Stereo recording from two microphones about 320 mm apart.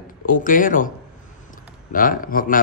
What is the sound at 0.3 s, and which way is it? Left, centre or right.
A man's voice, left.